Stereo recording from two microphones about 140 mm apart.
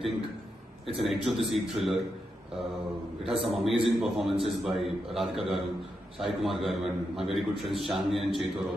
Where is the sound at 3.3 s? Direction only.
Centre (ahead or behind).